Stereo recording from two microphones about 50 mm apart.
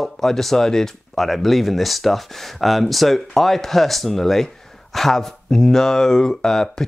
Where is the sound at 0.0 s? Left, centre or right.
Centre.